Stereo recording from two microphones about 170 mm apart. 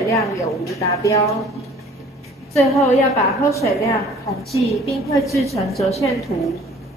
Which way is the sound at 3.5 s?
20° left (ahead or behind).